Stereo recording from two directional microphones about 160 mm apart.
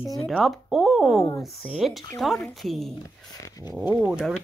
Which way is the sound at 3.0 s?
20° left (ahead or behind).